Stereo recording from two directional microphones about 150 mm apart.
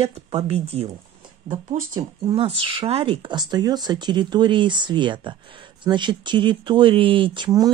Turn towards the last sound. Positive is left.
turn(degrees=-30)  # may be behind; listen again after turning